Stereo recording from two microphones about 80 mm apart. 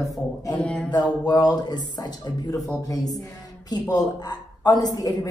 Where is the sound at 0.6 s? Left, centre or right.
Centre.